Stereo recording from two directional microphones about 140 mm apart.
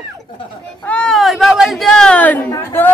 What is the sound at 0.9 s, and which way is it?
Speech, 5° left (ahead or behind).